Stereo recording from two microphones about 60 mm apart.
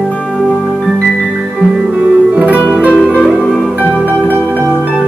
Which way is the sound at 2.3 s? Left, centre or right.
Right.